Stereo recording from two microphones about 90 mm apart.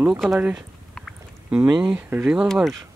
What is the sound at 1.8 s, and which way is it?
Speech, 15° right (ahead or behind).